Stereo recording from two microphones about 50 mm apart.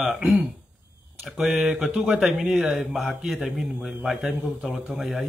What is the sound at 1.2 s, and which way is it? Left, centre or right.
Speech, centre.